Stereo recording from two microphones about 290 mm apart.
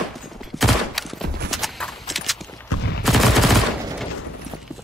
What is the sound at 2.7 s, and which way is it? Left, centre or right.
Fusillade, left.